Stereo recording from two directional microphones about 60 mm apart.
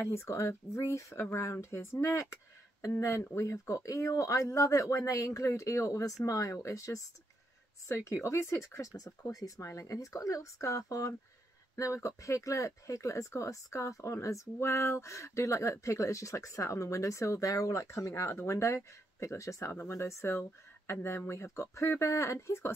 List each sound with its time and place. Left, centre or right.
0.0 s speech: left
7.9 s speech: left
17.8 s speech: left
19.7 s speech: left